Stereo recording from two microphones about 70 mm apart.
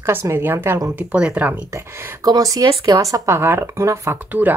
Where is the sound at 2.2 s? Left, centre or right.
Right.